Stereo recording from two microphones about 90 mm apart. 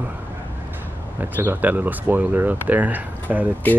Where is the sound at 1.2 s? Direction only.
20° right (ahead or behind).